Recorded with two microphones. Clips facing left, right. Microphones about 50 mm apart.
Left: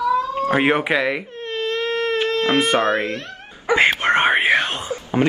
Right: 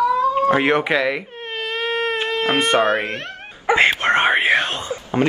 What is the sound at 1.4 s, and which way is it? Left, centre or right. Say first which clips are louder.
Baby cry: left 2 dB; centre.